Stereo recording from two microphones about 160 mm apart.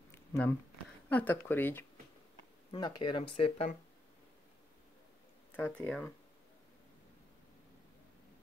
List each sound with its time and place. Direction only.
0.3 s speech: 10° left (ahead or behind)
2.7 s speech: 30° left (ahead or behind)
5.6 s speech: 5° left (ahead or behind)